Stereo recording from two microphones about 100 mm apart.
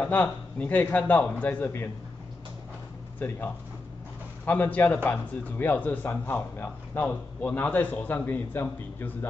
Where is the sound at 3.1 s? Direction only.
20° left (ahead or behind).